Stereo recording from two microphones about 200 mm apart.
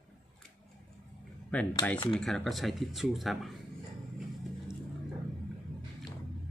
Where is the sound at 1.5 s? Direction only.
5° left (ahead or behind).